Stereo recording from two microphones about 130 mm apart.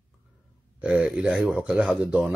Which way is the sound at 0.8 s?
5° right (ahead or behind).